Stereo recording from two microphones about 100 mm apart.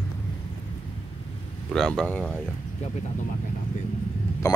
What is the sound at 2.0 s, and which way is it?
Speech, 15° left (ahead or behind).